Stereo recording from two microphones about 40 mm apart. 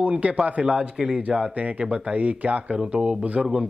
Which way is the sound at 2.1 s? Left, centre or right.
Right.